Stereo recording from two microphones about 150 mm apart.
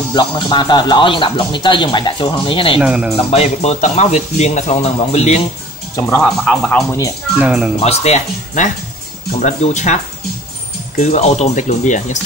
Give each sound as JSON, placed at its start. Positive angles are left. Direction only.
{"t": 0.1, "sound": "speech", "side_deg": 30}
{"t": 2.8, "sound": "speech", "side_deg": -5}
{"t": 3.3, "sound": "speech", "side_deg": 45}
{"t": 5.9, "sound": "speech", "side_deg": 15}
{"t": 6.2, "sound": "speech", "side_deg": 0}
{"t": 7.3, "sound": "speech", "side_deg": -10}
{"t": 7.8, "sound": "speech", "side_deg": 45}
{"t": 11.0, "sound": "speech", "side_deg": 45}